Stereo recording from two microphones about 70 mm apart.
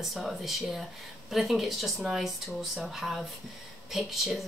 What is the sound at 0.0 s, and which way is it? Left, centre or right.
Speech, centre.